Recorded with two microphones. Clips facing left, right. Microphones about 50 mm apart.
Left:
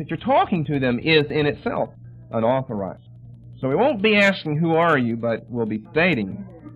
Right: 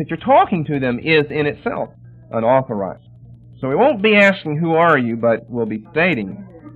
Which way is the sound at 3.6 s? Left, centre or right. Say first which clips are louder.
Right 2 dB; centre.